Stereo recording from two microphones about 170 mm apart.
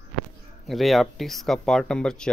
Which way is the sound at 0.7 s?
Centre (ahead or behind).